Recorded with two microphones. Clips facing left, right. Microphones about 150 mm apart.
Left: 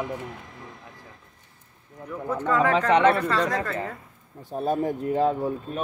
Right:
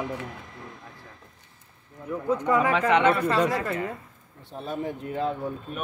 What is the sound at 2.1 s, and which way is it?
Speech, 15° right (ahead or behind).